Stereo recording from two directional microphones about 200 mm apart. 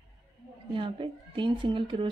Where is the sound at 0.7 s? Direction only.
25° right (ahead or behind).